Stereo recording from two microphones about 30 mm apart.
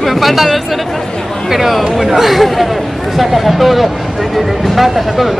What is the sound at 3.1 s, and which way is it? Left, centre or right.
Speech, centre.